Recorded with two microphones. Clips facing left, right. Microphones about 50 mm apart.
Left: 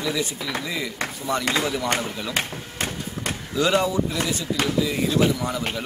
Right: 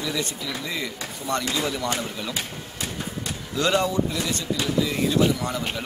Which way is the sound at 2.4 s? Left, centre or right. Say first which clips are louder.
Left 4 dB; left.